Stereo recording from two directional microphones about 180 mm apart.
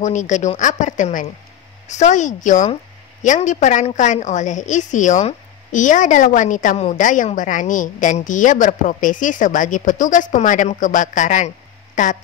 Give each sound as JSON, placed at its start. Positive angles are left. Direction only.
{"t": 0.0, "sound": "a woman's voice", "side_deg": 45}